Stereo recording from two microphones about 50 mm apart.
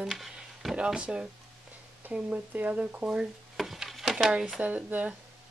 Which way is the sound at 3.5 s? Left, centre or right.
Centre.